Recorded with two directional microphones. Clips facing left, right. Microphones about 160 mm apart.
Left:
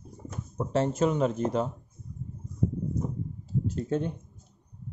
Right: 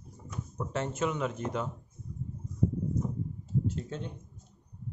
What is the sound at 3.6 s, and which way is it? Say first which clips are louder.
Speech: left 7 dB; 45° left (ahead or behind).